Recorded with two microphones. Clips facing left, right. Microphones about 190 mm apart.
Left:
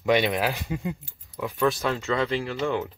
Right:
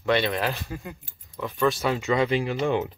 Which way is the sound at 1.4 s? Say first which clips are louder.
Even; 5° left (ahead or behind).